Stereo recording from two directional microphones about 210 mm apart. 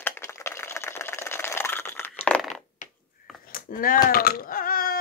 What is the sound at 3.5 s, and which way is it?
Speech, 40° left (ahead or behind).